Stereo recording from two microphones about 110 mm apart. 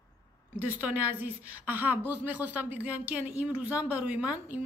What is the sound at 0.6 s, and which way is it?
A woman's voice, 15° right (ahead or behind).